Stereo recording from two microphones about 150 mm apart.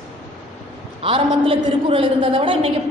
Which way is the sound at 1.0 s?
35° right (ahead or behind).